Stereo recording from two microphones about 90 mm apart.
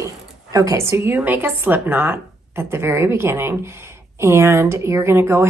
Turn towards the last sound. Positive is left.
turn(degrees=-30)  # may be behind; listen again after turning